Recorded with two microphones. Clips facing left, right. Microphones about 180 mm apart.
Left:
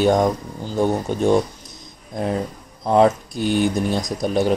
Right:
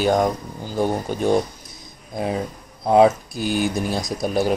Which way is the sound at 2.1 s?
10° right (ahead or behind).